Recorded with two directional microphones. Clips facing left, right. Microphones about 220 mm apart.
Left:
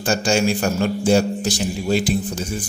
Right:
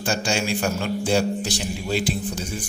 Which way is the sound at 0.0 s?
45° left (ahead or behind).